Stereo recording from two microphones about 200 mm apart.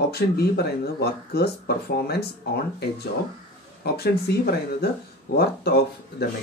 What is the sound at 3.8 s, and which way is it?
Speech, 55° left (ahead or behind).